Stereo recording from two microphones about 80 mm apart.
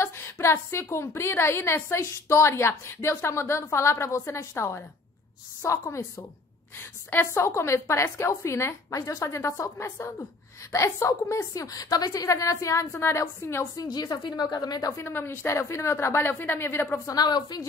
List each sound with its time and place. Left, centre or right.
0.0 s a woman's voice: left
6.8 s a woman's voice: left
13.7 s a woman's voice: left
15.0 s a woman's voice: left
17.0 s speech: left